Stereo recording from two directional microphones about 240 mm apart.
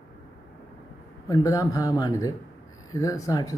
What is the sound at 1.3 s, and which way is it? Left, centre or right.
Speech, centre.